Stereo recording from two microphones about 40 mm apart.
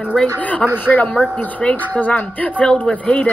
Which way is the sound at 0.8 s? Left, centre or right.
Left.